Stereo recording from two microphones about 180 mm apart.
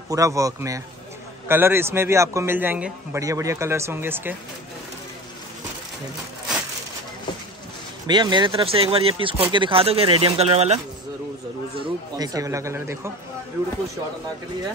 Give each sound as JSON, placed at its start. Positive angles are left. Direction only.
{"t": 0.1, "sound": "a man's voice", "side_deg": -20}
{"t": 8.1, "sound": "speech", "side_deg": -25}
{"t": 11.7, "sound": "a man's voice", "side_deg": -25}